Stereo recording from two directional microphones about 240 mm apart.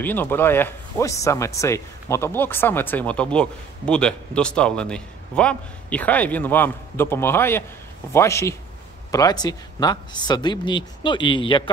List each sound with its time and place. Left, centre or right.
0.0 s speech: centre